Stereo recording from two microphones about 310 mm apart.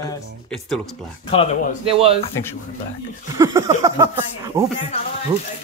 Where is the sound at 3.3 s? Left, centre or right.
Centre.